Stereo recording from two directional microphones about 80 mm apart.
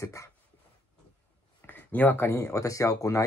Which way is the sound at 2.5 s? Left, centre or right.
Left.